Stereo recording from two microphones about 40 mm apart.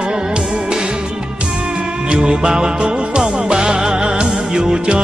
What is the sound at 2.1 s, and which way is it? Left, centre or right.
Music, right.